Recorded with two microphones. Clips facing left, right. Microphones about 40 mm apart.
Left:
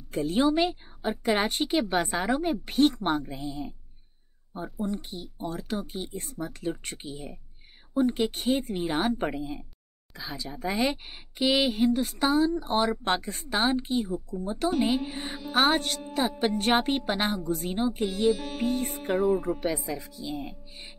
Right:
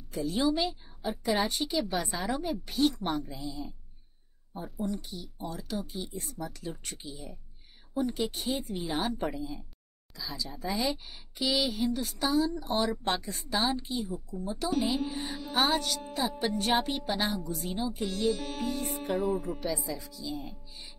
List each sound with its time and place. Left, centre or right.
0.1 s a woman's voice: left
4.8 s a woman's voice: left
15.5 s a woman's voice: left
18.3 s music: centre
18.6 s a woman's voice: left
19.1 s speech: centre
19.6 s a woman's voice: left